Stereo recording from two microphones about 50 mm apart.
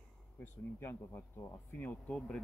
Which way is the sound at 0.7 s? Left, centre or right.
Left.